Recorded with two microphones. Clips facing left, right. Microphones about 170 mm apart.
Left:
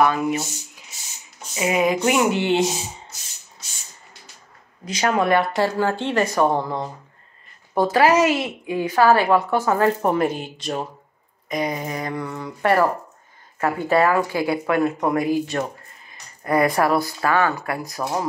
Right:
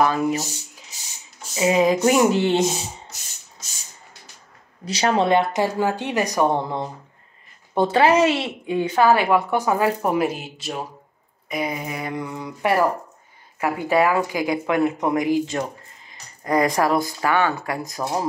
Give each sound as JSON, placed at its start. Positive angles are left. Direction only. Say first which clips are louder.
{"t": 0.0, "sound": "speech", "louder": "even", "side_deg": -35}
{"t": 1.5, "sound": "speech", "louder": "right 2 dB", "side_deg": -30}
{"t": 4.8, "sound": "a woman's voice", "louder": "right 1 dB", "side_deg": -30}
{"t": 12.0, "sound": "a woman's voice", "louder": "left 1 dB", "side_deg": -15}